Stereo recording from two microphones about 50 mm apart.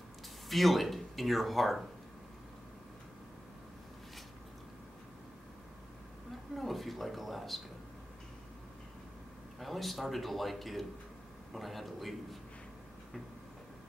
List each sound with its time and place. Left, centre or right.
0.5 s speech: centre
6.5 s a sound: centre
9.6 s speech: centre